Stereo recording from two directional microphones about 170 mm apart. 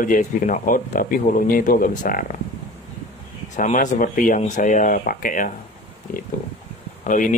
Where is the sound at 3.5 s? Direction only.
45° left (ahead or behind).